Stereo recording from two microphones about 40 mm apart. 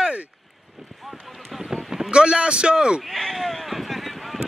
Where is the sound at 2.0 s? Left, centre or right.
Right.